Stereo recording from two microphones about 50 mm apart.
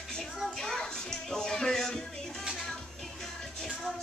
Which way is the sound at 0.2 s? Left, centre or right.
Centre.